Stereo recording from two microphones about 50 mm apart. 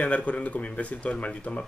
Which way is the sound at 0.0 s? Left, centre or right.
Left.